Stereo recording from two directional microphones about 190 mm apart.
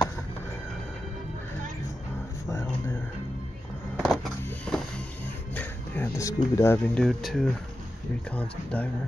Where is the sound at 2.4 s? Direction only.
15° left (ahead or behind).